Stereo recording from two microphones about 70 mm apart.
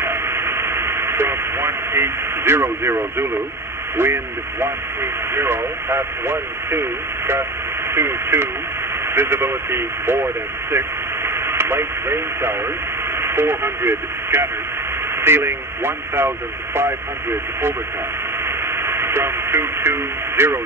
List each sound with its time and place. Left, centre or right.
0.0 s radio: right
3.9 s speech: right
18.8 s speech: right